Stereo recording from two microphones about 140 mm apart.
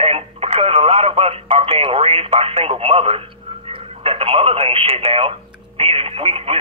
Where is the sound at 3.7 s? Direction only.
45° right (ahead or behind).